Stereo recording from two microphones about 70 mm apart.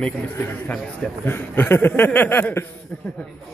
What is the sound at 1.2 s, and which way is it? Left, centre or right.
Speech, left.